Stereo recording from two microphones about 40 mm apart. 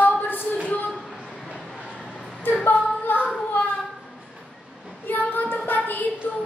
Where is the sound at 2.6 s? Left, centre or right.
Left.